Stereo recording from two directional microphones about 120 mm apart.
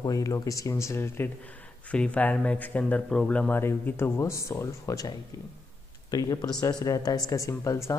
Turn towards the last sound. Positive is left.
turn(degrees=25)  # may be behind; listen again after turning